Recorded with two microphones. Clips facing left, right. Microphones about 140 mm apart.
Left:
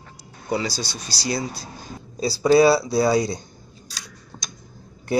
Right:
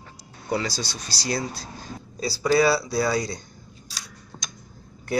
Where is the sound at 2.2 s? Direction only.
25° left (ahead or behind).